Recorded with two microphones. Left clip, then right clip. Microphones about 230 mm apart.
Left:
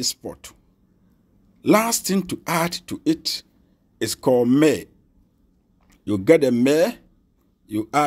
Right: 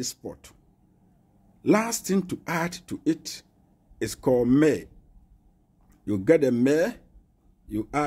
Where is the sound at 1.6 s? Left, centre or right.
Centre.